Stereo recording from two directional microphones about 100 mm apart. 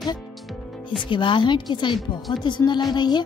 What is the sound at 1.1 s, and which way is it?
Speech, 55° left (ahead or behind).